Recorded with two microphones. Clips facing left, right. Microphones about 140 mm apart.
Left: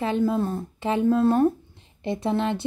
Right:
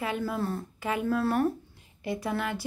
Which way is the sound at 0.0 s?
25° left (ahead or behind).